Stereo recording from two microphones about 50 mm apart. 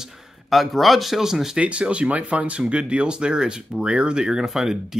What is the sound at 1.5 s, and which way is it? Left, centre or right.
Speech, right.